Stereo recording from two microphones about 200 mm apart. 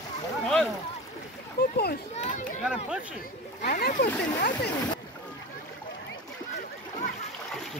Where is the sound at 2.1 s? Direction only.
35° left (ahead or behind).